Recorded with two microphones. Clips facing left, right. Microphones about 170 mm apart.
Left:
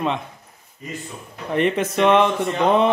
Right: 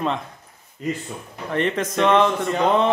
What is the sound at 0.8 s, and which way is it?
Speech, 85° right.